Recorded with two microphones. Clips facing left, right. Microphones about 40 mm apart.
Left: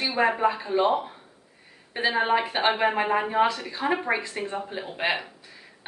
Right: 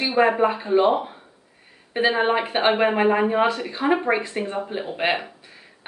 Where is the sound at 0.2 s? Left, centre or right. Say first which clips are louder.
Right 4 dB; right.